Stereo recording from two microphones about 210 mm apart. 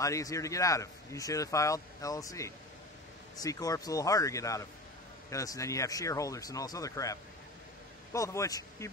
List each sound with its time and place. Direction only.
0.0 s a man's voice: 15° left (ahead or behind)